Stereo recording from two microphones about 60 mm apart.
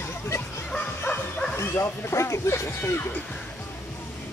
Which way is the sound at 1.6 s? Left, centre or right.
Left.